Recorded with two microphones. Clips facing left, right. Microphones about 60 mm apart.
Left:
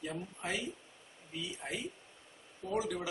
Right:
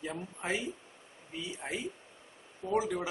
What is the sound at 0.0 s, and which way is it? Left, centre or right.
A man's voice, right.